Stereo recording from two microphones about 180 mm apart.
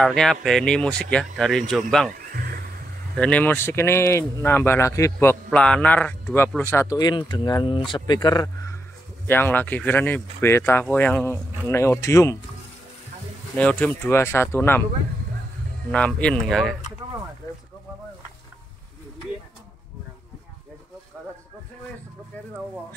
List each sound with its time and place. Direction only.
0.0 s speech: centre (ahead or behind)
2.1 s a sound: 55° right (ahead or behind)
3.2 s speech: 10° left (ahead or behind)
9.3 s speech: 10° left (ahead or behind)
13.6 s speech: 5° left (ahead or behind)
15.9 s speech: 5° left (ahead or behind)